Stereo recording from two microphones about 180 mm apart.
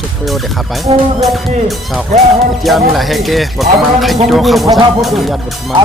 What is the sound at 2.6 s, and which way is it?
Speech, centre (ahead or behind).